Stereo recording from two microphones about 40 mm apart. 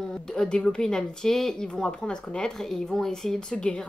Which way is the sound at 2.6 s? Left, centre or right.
Centre.